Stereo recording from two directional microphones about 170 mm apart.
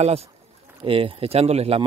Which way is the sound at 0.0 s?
35° right (ahead or behind).